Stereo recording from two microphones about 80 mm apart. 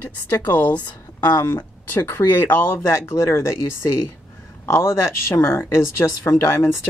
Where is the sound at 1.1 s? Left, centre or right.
Left.